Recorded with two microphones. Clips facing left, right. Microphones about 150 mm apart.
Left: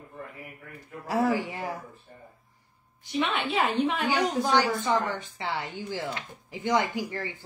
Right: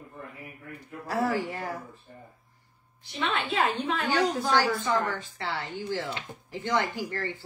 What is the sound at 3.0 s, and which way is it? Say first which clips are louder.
A woman's voice: left 2 dB; 15° left (ahead or behind).